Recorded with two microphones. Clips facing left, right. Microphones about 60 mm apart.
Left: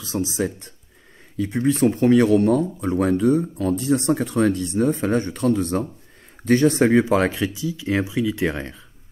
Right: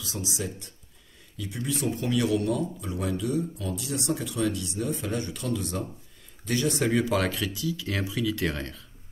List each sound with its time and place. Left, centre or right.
0.0 s speech: left